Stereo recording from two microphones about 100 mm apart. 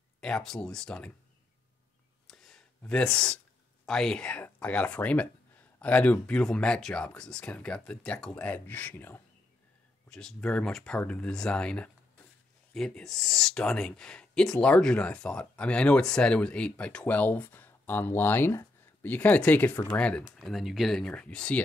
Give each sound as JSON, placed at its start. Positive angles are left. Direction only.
{"t": 0.2, "sound": "speech", "side_deg": 5}
{"t": 2.2, "sound": "a sound", "side_deg": 5}
{"t": 2.8, "sound": "speech", "side_deg": 10}
{"t": 10.0, "sound": "speech", "side_deg": 5}
{"t": 20.3, "sound": "speech", "side_deg": 0}